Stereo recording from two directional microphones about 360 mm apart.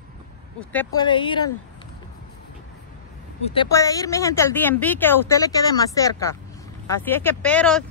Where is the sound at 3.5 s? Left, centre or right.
Centre.